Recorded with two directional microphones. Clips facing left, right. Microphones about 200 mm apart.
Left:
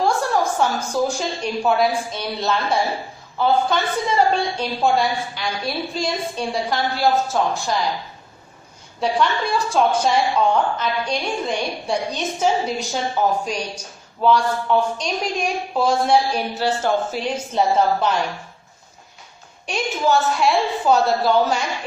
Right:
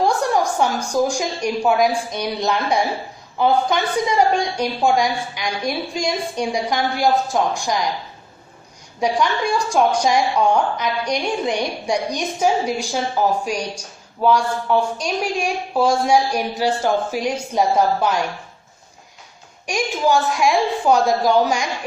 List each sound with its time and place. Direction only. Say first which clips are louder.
0.0 s a woman's voice: right 1 dB; 15° right (ahead or behind)
9.0 s a woman's voice: right 1 dB; 15° right (ahead or behind)
19.6 s a woman's voice: right 2 dB; 10° right (ahead or behind)